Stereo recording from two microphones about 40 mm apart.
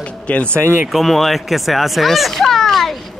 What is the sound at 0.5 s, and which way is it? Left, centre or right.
Speech, right.